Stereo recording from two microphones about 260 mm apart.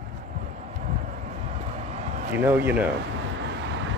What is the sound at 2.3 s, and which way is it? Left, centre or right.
Speech, centre.